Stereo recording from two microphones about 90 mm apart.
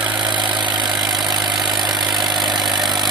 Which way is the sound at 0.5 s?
55° right (ahead or behind).